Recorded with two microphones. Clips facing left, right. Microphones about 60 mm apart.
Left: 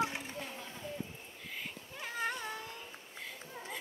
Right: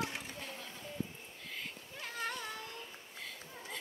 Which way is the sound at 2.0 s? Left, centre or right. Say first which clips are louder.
Left 3 dB; centre.